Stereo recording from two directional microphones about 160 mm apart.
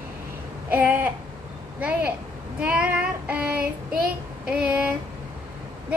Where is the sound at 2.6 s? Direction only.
5° right (ahead or behind).